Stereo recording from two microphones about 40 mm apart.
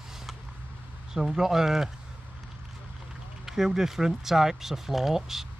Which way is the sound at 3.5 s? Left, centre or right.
Centre.